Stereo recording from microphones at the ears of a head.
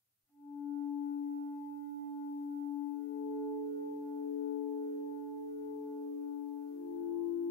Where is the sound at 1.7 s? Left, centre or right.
Right.